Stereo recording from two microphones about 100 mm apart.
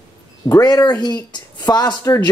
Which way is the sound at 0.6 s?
45° left (ahead or behind).